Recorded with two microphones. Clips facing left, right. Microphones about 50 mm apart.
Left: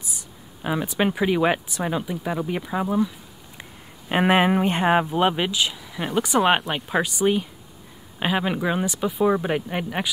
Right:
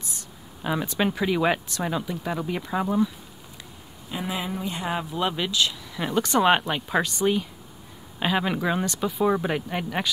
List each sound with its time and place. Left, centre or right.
0.0 s speech: centre
4.1 s speech: left; by 10.0 s centre